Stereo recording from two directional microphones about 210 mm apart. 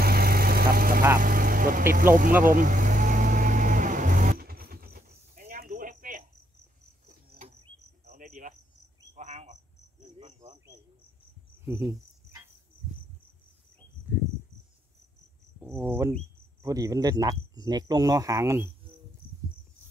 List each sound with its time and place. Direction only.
0.0 s vehicle: 45° right (ahead or behind)
1.2 s speech: 40° right (ahead or behind)
2.4 s vehicle: 40° right (ahead or behind)
7.1 s insect: 35° right (ahead or behind)
8.1 s cricket: 40° right (ahead or behind)
9.1 s a sound: 35° right (ahead or behind)
11.6 s cricket: 10° right (ahead or behind)
15.6 s speech: 10° right (ahead or behind)